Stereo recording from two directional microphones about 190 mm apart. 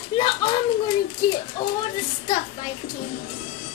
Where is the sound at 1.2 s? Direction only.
20° left (ahead or behind).